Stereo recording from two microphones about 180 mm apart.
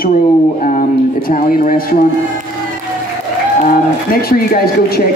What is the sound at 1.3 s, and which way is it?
Speech, 50° left (ahead or behind).